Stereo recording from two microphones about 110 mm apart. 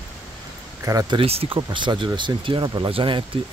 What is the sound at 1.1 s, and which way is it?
Speech, 60° right (ahead or behind).